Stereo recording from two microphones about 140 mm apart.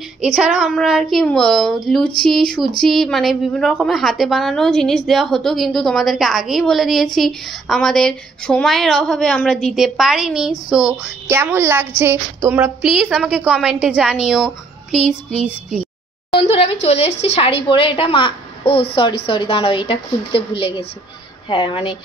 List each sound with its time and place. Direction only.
0.2 s a woman's voice: 5° right (ahead or behind)
11.2 s a woman's voice: 15° right (ahead or behind)
15.8 s a woman's voice: 40° left (ahead or behind)